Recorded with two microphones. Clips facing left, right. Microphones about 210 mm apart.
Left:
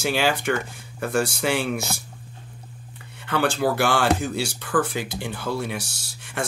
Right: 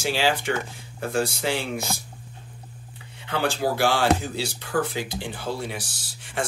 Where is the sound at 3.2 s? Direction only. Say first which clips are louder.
Left 3 dB; 60° left (ahead or behind).